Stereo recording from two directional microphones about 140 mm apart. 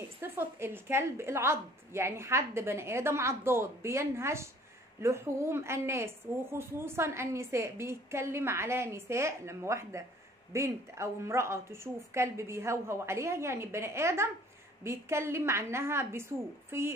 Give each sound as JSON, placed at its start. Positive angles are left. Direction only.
{"t": 0.2, "sound": "a woman's voice", "side_deg": -15}